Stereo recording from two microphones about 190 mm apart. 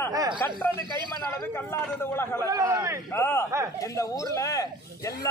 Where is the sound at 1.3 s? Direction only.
15° left (ahead or behind).